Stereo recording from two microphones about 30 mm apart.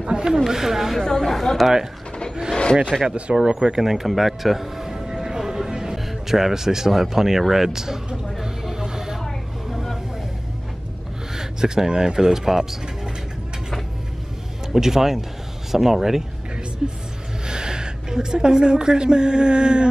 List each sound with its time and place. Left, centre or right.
0.0 s speech: right
0.5 s speech: centre
1.0 s a woman's voice: left
1.3 s speech: centre
2.9 s speech: centre
3.5 s music: centre
6.3 s speech: centre
8.4 s a sound: centre
11.3 s speech: centre
14.7 s a woman's voice: centre; by 19.9 s right